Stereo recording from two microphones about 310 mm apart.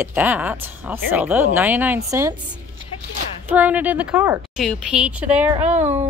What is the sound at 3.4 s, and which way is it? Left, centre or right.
Speech, centre.